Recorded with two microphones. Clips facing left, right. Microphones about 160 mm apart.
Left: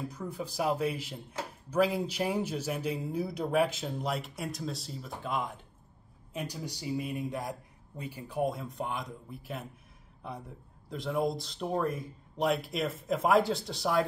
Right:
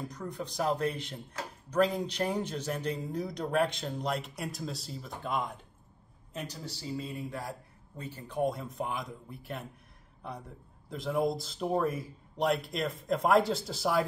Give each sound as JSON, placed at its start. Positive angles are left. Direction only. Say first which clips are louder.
{"t": 0.1, "sound": "a man's voice", "louder": "left 1 dB", "side_deg": 5}
{"t": 6.3, "sound": "a man's voice", "louder": "left 2 dB", "side_deg": 10}